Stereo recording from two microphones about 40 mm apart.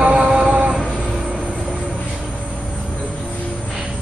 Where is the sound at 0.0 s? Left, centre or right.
Right.